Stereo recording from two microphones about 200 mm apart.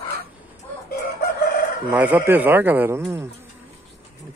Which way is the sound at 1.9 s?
10° right (ahead or behind).